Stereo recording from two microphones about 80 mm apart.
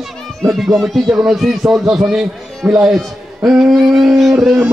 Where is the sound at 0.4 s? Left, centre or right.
Centre.